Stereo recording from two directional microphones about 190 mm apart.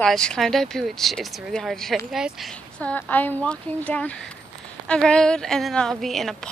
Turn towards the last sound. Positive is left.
turn(degrees=0)  # may be behind; listen again after turning